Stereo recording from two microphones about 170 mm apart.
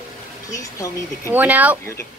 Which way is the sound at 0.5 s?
20° left (ahead or behind).